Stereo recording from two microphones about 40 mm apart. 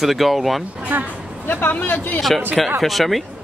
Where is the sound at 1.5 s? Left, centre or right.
Left.